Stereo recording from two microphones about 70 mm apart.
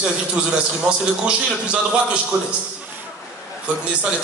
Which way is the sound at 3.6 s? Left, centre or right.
Centre.